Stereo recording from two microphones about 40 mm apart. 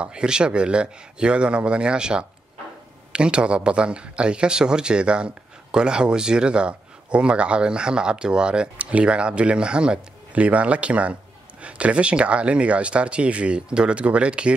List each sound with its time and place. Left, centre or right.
0.0 s speech: right
10.3 s speech: right